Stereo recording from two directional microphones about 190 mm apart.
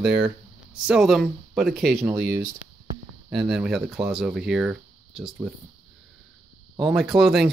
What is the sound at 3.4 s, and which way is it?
Speech, centre (ahead or behind).